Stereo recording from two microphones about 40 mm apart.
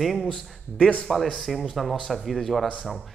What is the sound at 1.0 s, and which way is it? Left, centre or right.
A man's voice, centre.